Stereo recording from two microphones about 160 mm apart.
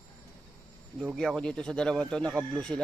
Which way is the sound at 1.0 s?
5° left (ahead or behind).